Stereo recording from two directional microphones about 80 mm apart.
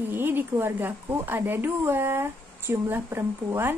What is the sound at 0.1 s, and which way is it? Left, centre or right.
A woman's voice, right.